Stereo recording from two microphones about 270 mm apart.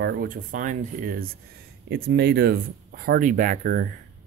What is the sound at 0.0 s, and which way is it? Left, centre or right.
Speech, right.